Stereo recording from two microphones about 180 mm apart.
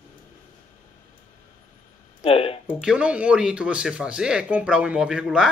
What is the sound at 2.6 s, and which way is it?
Speech, 5° right (ahead or behind).